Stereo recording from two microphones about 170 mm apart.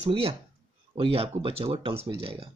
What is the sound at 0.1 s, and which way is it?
Speech, 35° right (ahead or behind).